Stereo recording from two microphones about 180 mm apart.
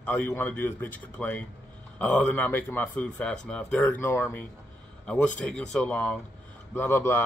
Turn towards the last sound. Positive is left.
turn(degrees=10)  # may be behind; listen again after turning